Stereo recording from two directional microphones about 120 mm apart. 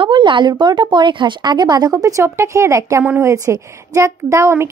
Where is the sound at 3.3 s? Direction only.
30° right (ahead or behind).